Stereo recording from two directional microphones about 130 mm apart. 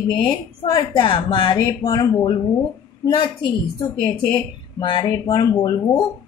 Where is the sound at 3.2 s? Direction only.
40° left (ahead or behind).